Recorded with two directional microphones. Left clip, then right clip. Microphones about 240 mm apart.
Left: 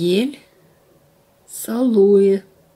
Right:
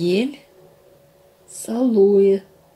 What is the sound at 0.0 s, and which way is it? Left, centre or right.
Speech, left.